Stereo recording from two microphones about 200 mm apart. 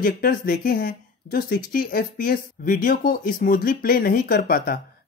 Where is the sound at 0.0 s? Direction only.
45° left (ahead or behind).